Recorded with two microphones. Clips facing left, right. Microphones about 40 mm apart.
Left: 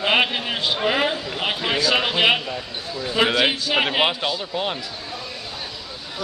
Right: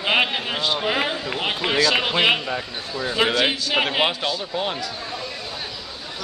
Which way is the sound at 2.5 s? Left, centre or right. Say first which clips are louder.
Right 2 dB; right.